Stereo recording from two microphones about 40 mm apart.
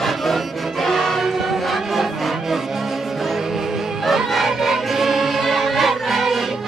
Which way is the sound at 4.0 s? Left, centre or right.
Centre.